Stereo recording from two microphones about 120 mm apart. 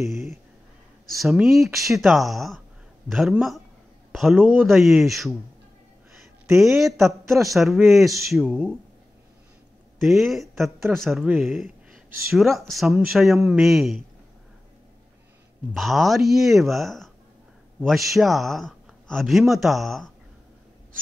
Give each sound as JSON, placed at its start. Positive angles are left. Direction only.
{"t": 0.0, "sound": "a sound", "side_deg": 0}
{"t": 1.1, "sound": "speech", "side_deg": 0}
{"t": 6.5, "sound": "speech", "side_deg": -5}
{"t": 7.2, "sound": "a man's voice", "side_deg": -25}
{"t": 7.5, "sound": "speech", "side_deg": 0}
{"t": 9.9, "sound": "speech", "side_deg": 0}
{"t": 15.7, "sound": "speech", "side_deg": 0}